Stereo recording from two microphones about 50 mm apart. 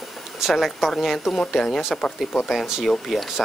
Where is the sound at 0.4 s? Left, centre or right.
Centre.